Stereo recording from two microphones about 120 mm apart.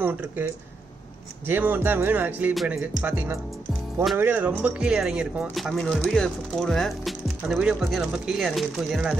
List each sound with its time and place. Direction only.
0.0 s speech: 15° right (ahead or behind)
1.5 s speech: 15° right (ahead or behind)